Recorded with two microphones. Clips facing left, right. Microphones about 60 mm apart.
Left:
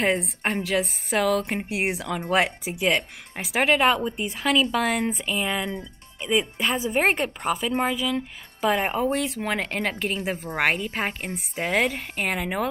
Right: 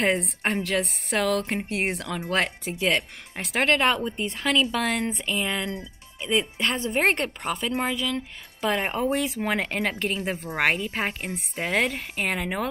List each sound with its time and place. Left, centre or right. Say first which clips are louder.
0.0 s speech: even; centre